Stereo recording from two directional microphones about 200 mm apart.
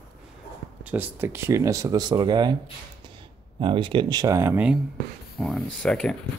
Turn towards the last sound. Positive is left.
turn(degrees=5)  # may be behind; listen again after turning